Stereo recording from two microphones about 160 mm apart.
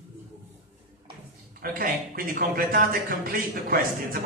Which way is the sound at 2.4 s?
65° right (ahead or behind).